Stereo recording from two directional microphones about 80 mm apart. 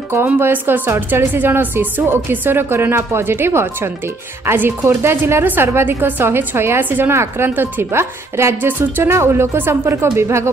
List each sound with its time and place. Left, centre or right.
0.4 s a woman's voice: right